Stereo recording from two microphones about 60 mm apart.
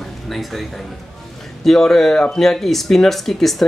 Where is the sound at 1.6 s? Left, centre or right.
Centre.